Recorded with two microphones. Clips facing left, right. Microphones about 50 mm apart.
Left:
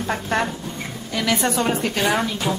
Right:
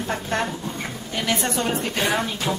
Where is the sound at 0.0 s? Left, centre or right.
Left.